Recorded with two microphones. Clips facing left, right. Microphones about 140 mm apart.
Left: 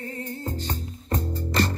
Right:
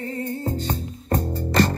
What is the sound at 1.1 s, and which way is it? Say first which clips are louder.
Music: right 5 dB; 60° right (ahead or behind).